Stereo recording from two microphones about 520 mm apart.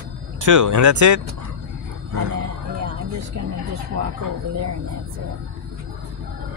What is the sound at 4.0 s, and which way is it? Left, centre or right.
Speech, right.